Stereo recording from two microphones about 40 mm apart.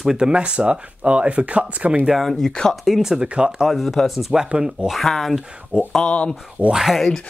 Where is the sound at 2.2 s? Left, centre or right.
Centre.